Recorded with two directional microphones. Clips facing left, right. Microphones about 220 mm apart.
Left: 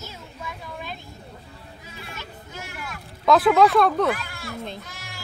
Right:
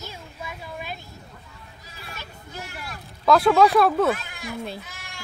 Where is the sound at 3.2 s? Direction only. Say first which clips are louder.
Even; centre (ahead or behind).